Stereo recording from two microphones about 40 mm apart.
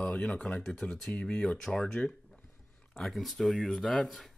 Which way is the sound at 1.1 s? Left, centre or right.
Left.